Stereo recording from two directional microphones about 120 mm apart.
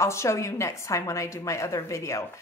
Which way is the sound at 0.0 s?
25° left (ahead or behind).